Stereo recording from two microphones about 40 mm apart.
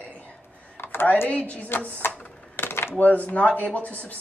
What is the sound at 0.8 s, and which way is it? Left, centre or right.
Computer keyboard, left.